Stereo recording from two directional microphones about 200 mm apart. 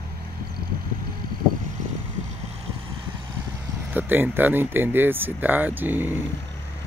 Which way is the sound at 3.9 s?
10° right (ahead or behind).